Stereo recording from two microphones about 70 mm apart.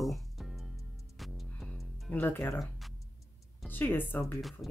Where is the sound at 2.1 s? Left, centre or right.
Left.